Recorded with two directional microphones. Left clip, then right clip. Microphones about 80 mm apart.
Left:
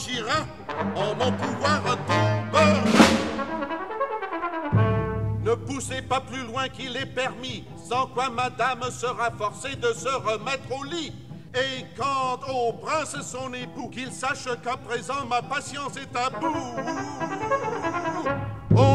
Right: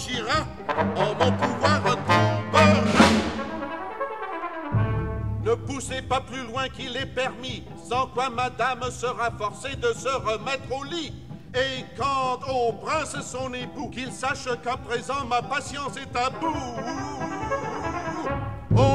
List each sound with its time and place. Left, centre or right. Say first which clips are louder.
0.0 s music: right 1 dB; left
2.8 s music: left 1 dB; left
4.2 s brass instrument: left 2 dB; left
5.4 s music: right 1 dB; left